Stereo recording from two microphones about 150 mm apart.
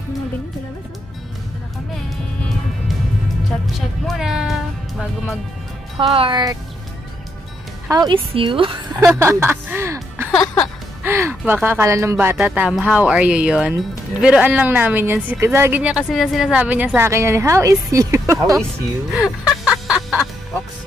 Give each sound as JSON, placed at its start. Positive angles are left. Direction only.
{"t": 4.1, "sound": "music", "side_deg": -5}
{"t": 5.9, "sound": "a woman's voice", "side_deg": -35}
{"t": 7.9, "sound": "a woman's voice", "side_deg": -30}
{"t": 9.0, "sound": "music", "side_deg": -20}
{"t": 11.1, "sound": "speech", "side_deg": -15}
{"t": 19.1, "sound": "music", "side_deg": -5}